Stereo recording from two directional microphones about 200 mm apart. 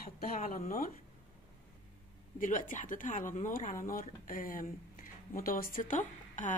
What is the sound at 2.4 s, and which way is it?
A woman's voice, 40° left (ahead or behind).